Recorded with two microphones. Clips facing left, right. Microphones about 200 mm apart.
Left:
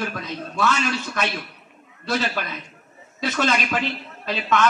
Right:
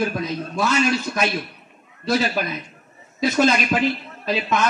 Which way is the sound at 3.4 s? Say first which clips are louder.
Right 4 dB; 15° right (ahead or behind).